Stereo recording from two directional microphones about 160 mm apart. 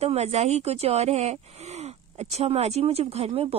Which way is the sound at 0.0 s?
40° right (ahead or behind).